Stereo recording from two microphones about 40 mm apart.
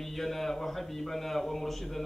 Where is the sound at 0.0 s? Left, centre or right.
Centre.